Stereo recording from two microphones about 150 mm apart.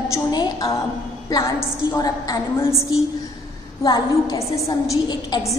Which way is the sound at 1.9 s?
25° left (ahead or behind).